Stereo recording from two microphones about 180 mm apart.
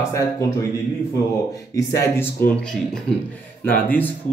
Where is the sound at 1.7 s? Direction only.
15° left (ahead or behind).